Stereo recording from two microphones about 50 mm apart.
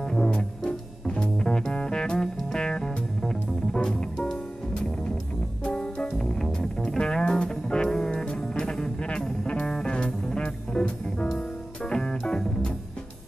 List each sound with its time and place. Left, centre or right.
0.0 s music: centre